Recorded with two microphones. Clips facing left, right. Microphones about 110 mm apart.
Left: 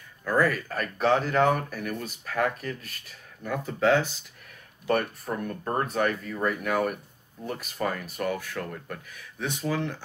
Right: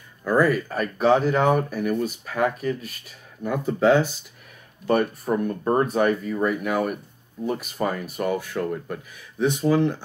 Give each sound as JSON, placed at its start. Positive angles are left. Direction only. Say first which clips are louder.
{"t": 0.2, "sound": "speech", "louder": "right 5 dB", "side_deg": -15}